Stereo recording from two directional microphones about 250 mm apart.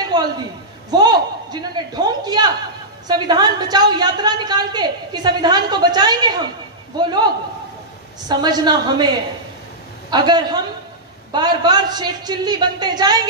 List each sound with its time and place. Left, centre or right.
0.1 s a man's voice: centre
8.3 s a woman's voice: centre